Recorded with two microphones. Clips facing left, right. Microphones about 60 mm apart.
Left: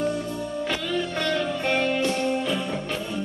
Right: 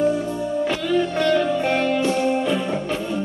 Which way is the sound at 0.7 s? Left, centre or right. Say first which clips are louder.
Right 6 dB; centre.